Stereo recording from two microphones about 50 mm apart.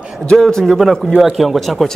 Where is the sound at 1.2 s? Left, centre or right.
Centre.